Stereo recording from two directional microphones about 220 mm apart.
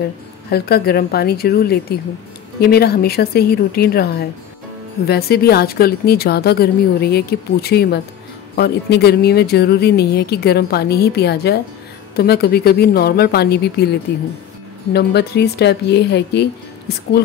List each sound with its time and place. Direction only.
0.5 s speech: 45° left (ahead or behind)